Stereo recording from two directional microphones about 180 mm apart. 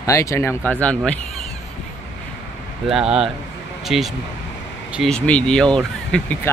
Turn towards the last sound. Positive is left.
turn(degrees=5)  # may be behind; listen again after turning